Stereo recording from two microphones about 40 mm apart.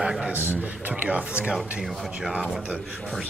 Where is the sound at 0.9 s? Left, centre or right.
Right.